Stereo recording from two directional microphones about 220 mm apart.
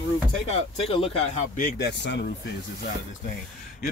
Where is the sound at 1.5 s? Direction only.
50° left (ahead or behind).